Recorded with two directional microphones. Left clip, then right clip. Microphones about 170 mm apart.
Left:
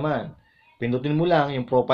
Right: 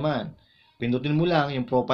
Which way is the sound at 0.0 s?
25° left (ahead or behind).